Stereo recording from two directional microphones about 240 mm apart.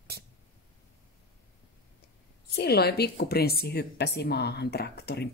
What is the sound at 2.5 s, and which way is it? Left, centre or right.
A woman's voice, left.